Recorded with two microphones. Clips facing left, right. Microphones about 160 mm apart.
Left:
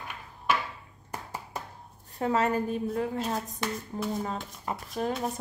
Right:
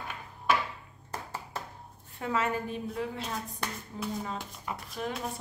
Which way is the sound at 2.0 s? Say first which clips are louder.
Left 4 dB; 40° left (ahead or behind).